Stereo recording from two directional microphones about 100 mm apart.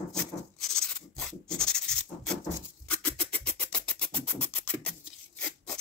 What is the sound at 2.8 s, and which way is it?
Music, 10° left (ahead or behind).